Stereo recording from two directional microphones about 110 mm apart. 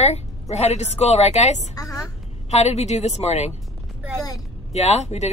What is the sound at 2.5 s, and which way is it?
A woman's voice, 80° left.